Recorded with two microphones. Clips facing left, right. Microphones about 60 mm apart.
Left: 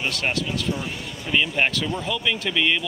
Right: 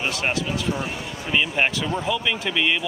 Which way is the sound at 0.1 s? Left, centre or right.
Centre.